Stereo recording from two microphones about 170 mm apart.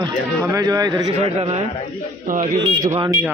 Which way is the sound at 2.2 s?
50° right (ahead or behind).